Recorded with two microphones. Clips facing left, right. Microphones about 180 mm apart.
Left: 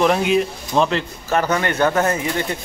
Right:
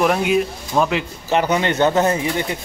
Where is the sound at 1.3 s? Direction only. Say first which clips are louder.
Right 1 dB; 20° right (ahead or behind).